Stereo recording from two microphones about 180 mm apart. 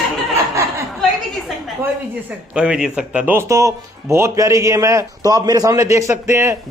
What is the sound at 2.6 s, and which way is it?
Speech, 5° right (ahead or behind).